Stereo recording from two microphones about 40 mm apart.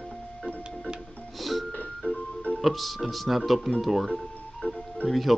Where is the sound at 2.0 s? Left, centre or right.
Left.